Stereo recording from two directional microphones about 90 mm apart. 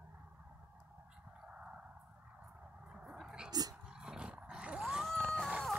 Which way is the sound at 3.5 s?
45° right (ahead or behind).